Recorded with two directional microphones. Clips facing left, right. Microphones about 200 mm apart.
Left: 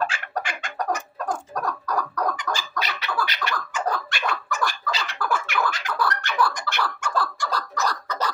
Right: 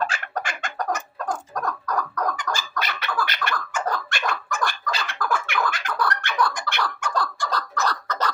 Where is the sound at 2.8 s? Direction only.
50° right (ahead or behind).